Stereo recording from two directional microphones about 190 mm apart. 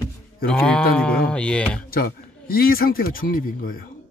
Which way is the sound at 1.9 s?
50° left (ahead or behind).